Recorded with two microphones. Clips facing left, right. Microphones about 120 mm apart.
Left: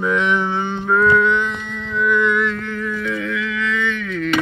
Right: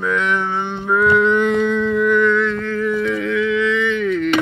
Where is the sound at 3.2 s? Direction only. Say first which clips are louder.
Right 6 dB; 25° right (ahead or behind).